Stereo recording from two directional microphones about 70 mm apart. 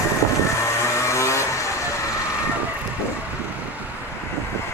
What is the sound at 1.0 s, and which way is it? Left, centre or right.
Vehicle, left.